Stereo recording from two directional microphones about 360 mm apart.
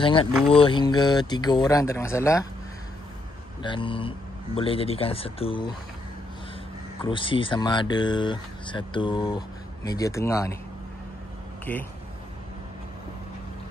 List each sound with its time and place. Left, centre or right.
0.0 s speech: centre
3.6 s speech: centre
7.0 s speech: centre
11.7 s speech: centre